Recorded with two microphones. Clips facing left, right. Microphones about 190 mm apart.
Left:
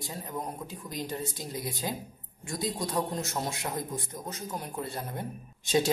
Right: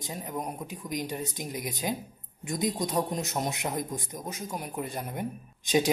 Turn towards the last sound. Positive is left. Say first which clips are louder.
# right 1 dB
turn(degrees=-15)  # may be behind; listen again after turning